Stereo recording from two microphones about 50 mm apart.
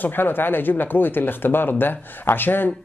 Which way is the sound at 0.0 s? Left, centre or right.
Left.